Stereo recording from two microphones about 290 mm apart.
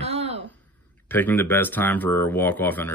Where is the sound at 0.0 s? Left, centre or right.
Right.